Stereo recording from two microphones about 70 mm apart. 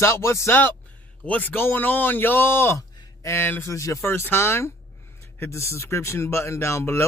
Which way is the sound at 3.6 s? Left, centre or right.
Left.